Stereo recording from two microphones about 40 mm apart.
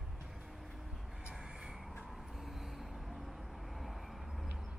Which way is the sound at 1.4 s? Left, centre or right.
Centre.